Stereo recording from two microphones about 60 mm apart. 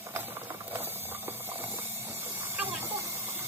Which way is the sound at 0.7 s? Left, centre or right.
Right.